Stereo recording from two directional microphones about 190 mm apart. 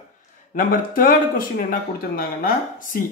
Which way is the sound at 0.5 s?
45° left (ahead or behind).